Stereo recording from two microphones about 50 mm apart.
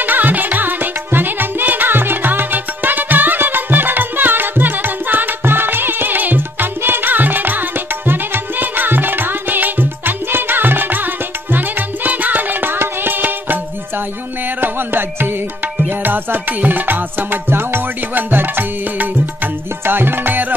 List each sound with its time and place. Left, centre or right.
0.0 s music: right
14.6 s music: right